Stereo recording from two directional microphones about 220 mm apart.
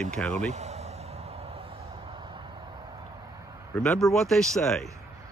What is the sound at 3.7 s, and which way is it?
Speech, 5° left (ahead or behind).